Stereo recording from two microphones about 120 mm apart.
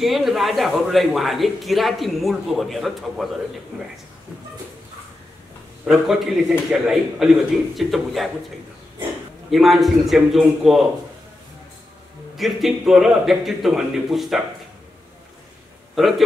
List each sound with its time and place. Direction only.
0.0 s a man's voice: centre (ahead or behind)
5.9 s a man's voice: centre (ahead or behind)
9.5 s a man's voice: centre (ahead or behind)
12.4 s a man's voice: centre (ahead or behind)
15.9 s a man's voice: centre (ahead or behind)